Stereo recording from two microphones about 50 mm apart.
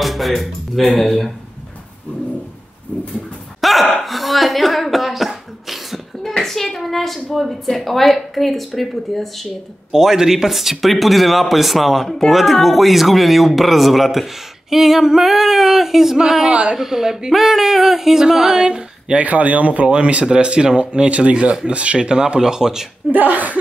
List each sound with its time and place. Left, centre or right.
0.0 s speech: centre
3.6 s a sound: centre
6.4 s hands: centre
7.2 s speech: centre
9.9 s speech: centre
16.8 s a sound: centre
19.2 s speech: right
21.6 s a sound: right
23.1 s speech: right